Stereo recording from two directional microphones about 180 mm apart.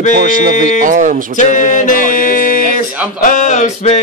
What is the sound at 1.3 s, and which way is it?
Speech, 45° left (ahead or behind).